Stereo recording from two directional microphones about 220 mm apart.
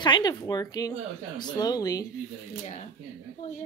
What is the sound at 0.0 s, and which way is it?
Speech, 20° left (ahead or behind).